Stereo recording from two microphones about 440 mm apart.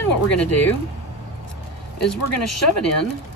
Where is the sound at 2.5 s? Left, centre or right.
Left.